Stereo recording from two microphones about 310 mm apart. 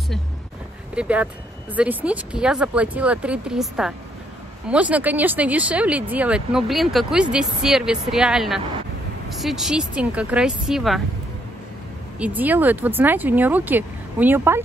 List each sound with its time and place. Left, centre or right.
0.9 s speech: centre
12.2 s speech: centre